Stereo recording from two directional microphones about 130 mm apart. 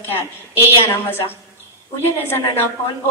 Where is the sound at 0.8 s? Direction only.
20° left (ahead or behind).